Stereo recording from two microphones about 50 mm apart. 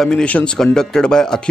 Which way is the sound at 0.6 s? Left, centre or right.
Centre.